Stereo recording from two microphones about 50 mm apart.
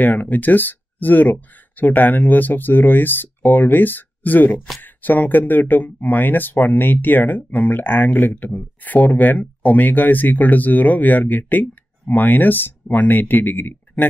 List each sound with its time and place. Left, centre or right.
0.0 s speech: left